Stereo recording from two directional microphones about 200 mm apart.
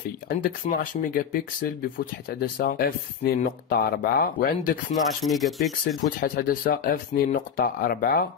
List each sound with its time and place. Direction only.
0.4 s speech: 45° left (ahead or behind)
5.2 s rub: centre (ahead or behind)
6.2 s speech: 45° left (ahead or behind)